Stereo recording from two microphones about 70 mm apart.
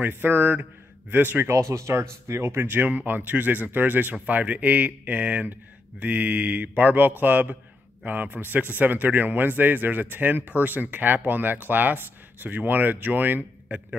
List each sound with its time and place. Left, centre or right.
0.0 s speech: right
1.5 s speech: right